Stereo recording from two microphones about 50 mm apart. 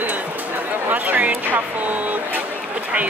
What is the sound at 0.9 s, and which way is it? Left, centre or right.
Speech, right.